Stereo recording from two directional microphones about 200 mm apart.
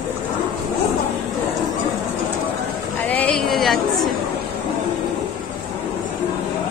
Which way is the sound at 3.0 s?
5° left (ahead or behind).